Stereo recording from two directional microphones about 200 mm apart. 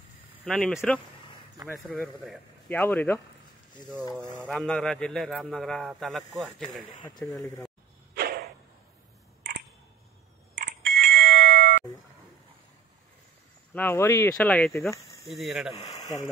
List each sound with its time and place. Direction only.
0.5 s a man's voice: 5° left (ahead or behind)
4.5 s a man's voice: 5° left (ahead or behind)
7.4 s speech: 15° left (ahead or behind)
8.1 s a sound: 50° right (ahead or behind)
10.6 s bicycle bell: 45° right (ahead or behind)
13.7 s a man's voice: 10° left (ahead or behind)
15.7 s speech: 30° left (ahead or behind)